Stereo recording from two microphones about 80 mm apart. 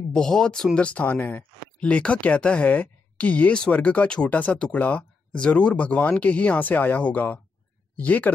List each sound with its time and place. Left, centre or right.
0.1 s speech: centre